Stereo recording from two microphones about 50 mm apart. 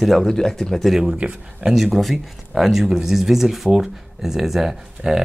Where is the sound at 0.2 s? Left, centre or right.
Centre.